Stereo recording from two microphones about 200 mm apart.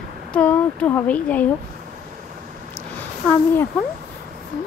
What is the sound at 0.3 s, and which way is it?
A woman's voice, 5° left (ahead or behind).